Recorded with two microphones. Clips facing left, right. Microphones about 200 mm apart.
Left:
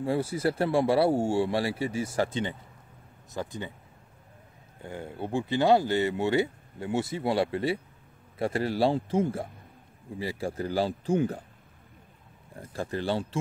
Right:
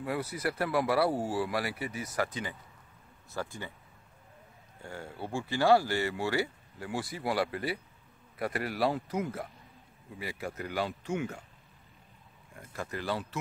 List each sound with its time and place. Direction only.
0.0 s speech: 30° left (ahead or behind)
4.8 s speech: 20° left (ahead or behind); by 11.4 s 35° left (ahead or behind)
12.5 s speech: 30° left (ahead or behind)